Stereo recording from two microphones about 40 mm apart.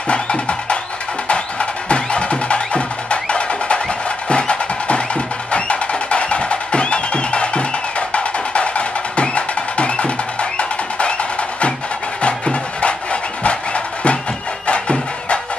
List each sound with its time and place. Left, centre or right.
0.1 s music: left
12.2 s music: left